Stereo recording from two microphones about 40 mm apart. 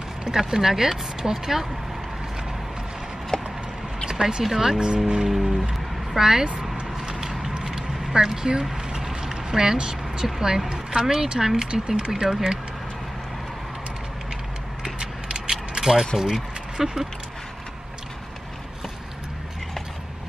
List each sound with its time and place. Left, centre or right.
0.2 s speech: centre
3.3 s clip-clop: centre
4.1 s speech: centre
7.2 s a sound: centre
10.2 s speech: centre
15.0 s mechanisms: right
16.7 s speech: centre